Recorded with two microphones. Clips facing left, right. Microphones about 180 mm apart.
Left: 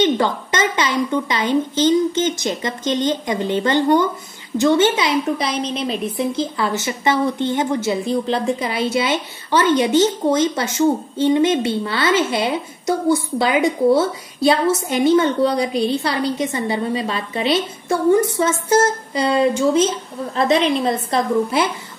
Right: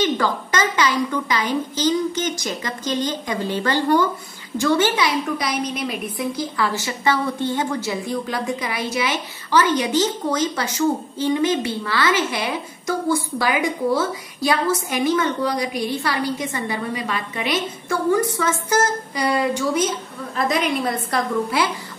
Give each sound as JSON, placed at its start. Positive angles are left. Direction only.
{"t": 0.0, "sound": "a woman's voice", "side_deg": 25}